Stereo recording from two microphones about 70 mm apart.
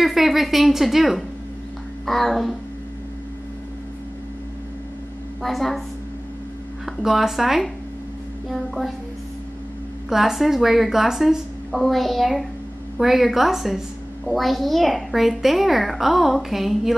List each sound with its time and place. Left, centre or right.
0.0 s a woman's voice: centre
5.4 s a woman's voice: centre
6.9 s a woman's voice: centre
10.0 s a woman's voice: centre